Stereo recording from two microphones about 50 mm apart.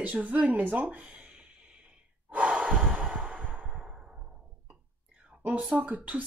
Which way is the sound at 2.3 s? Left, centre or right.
Right.